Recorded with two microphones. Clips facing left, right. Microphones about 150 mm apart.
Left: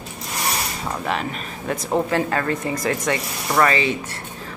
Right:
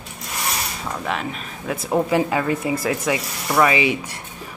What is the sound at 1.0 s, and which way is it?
A woman's voice, centre (ahead or behind).